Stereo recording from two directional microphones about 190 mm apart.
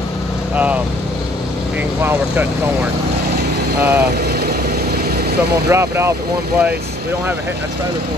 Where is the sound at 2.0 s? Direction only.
10° right (ahead or behind).